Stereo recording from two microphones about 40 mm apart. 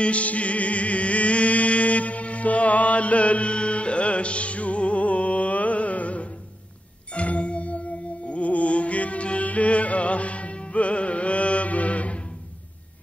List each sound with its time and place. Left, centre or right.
0.0 s music: left